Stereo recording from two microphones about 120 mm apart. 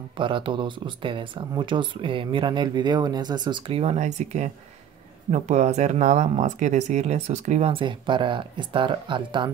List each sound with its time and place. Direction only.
0.2 s speech: 45° right (ahead or behind); by 7.7 s 70° right (ahead or behind)
7.7 s speech: 45° right (ahead or behind)